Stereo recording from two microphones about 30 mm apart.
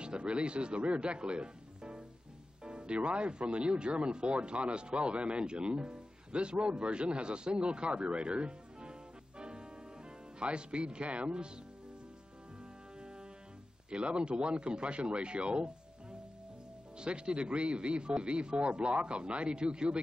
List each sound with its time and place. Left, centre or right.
0.0 s speech: right
9.4 s music: right
10.4 s speech: right
13.8 s speech: right